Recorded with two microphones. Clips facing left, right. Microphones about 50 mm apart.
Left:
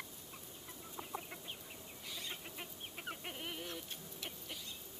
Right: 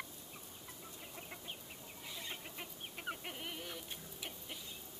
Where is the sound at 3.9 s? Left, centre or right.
Centre.